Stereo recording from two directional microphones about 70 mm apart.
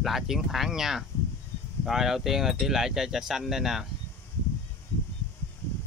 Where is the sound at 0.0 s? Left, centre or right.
Centre.